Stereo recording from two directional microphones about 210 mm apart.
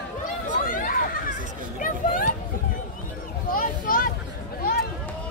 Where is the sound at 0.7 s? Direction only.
40° left (ahead or behind).